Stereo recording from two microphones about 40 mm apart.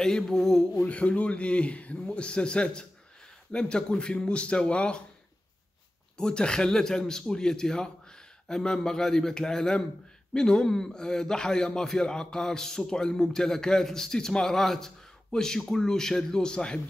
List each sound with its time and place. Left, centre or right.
0.0 s a man's voice: centre
0.8 s speech: left
6.1 s a man's voice: centre